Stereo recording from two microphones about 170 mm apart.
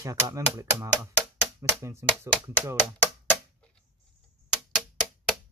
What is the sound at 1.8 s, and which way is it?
Speech, 15° right (ahead or behind).